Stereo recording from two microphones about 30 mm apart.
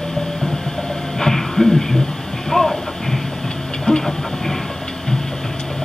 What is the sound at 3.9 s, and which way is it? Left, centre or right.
Train, left.